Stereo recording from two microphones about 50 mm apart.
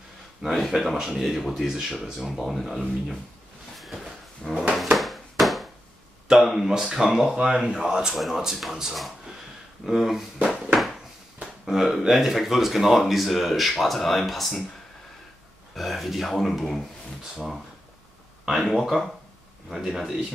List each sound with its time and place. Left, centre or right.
0.4 s speech: centre
1.7 s speech: centre
2.4 s speech: centre
3.8 s a sound: centre
4.4 s drawer open or close: centre
4.9 s a sound: centre
6.3 s speech: centre
15.7 s speech: centre
18.5 s speech: centre